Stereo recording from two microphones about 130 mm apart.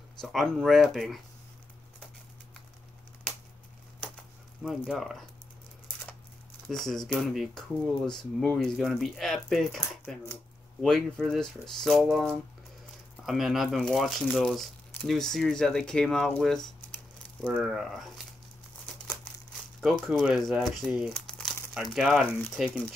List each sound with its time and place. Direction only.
0.2 s speech: centre (ahead or behind)
4.6 s speech: centre (ahead or behind)
6.7 s speech: centre (ahead or behind)
19.8 s speech: centre (ahead or behind)
21.1 s crumpling: 5° left (ahead or behind)
21.7 s speech: centre (ahead or behind)